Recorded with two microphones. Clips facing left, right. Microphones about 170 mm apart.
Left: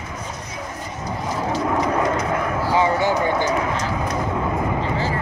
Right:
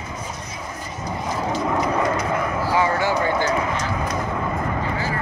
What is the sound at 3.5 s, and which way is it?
Run, centre (ahead or behind).